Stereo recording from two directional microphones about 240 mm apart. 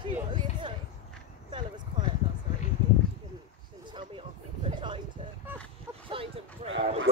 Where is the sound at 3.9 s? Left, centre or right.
Centre.